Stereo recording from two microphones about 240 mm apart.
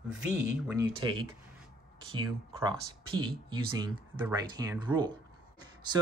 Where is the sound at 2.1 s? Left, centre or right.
Centre.